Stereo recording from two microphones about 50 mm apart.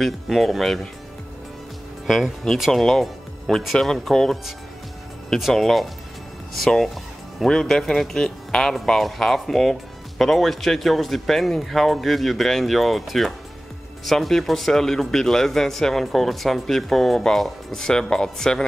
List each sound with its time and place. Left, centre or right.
0.0 s speech: centre
2.0 s speech: centre
5.5 s speech: centre